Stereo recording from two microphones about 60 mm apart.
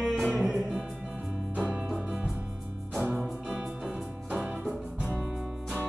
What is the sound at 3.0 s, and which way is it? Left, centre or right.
Music, right.